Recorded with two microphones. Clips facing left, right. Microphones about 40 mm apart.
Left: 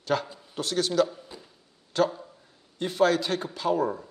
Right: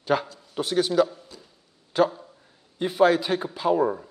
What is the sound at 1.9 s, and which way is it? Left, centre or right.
Speech, centre.